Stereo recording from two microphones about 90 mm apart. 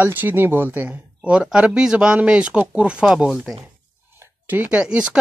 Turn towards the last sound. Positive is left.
turn(degrees=-10)  # may be behind; listen again after turning